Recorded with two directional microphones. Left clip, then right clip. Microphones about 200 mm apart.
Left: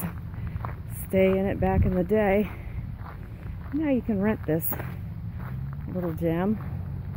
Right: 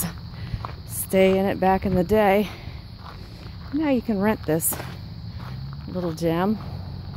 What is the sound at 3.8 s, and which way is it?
Speech, 20° right (ahead or behind).